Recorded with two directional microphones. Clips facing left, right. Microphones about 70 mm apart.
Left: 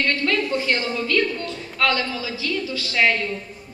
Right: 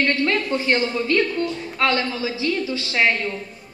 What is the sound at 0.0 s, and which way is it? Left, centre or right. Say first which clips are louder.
A woman's voice: right 1 dB; right.